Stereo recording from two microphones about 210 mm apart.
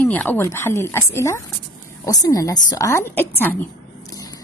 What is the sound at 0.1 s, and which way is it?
A woman's voice, 10° left (ahead or behind).